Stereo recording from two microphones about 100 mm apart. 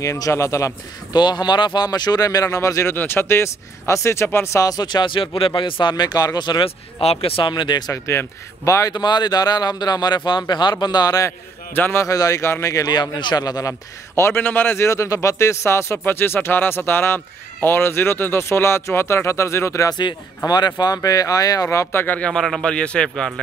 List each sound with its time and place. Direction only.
0.0 s speech: 30° left (ahead or behind)
1.1 s speech: 45° left (ahead or behind)
6.6 s speech: 80° left; by 7.9 s 45° left (ahead or behind)
7.9 s speech: 30° left (ahead or behind)
8.9 s a man's voice: 45° left (ahead or behind)
11.7 s a man's voice: 25° left (ahead or behind)
19.9 s a man's voice: 50° left (ahead or behind); by 23.4 s 5° left (ahead or behind)